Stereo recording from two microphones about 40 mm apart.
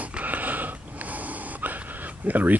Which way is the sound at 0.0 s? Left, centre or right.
Right.